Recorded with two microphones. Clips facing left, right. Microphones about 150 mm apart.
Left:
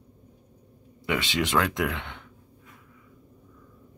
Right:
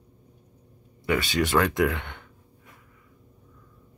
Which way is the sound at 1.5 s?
Centre (ahead or behind).